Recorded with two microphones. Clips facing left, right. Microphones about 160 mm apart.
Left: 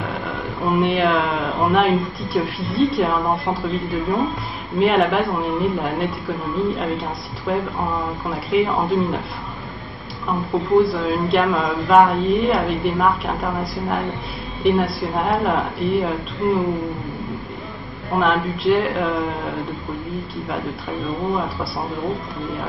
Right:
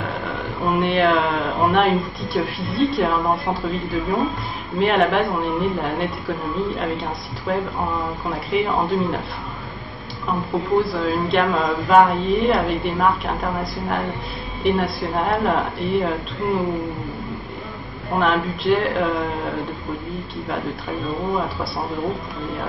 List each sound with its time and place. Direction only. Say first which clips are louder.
0.0 s speech: even; centre (ahead or behind)
10.2 s speech: left 1 dB; centre (ahead or behind)
14.6 s speech: left 2 dB; centre (ahead or behind)
18.1 s speech: left 1 dB; centre (ahead or behind)
21.2 s speech: left 1 dB; centre (ahead or behind)